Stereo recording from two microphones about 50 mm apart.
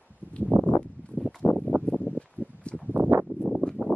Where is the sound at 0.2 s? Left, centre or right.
Left.